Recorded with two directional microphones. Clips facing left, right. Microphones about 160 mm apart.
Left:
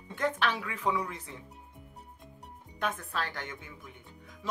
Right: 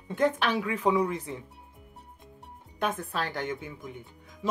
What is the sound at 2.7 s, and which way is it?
Speech, 15° right (ahead or behind).